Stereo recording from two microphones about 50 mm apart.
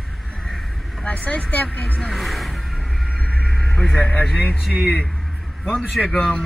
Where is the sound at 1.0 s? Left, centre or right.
Left.